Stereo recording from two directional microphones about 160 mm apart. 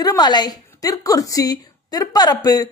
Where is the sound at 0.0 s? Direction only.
25° left (ahead or behind).